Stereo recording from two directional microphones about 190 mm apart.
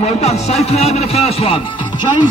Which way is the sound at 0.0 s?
35° left (ahead or behind).